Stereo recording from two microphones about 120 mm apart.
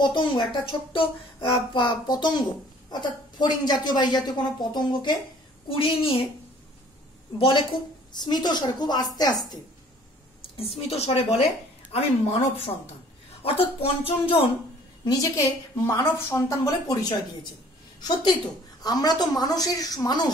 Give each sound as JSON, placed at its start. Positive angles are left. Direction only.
{"t": 0.0, "sound": "a child's voice", "side_deg": 40}
{"t": 5.7, "sound": "speech", "side_deg": 50}
{"t": 7.3, "sound": "a child's voice", "side_deg": 45}
{"t": 10.5, "sound": "a woman's voice", "side_deg": 55}
{"t": 15.0, "sound": "a woman's voice", "side_deg": 25}
{"t": 18.8, "sound": "a child's voice", "side_deg": 35}